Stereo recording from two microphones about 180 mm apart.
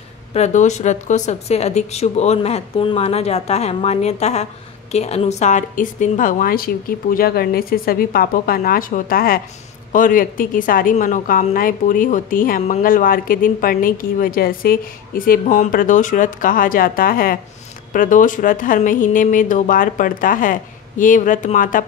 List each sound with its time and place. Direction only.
0.3 s a woman's voice: 40° left (ahead or behind)